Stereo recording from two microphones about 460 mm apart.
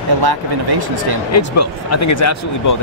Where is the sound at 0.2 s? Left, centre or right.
Right.